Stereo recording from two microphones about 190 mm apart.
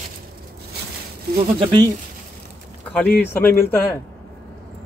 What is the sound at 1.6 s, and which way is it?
Speech, 25° right (ahead or behind).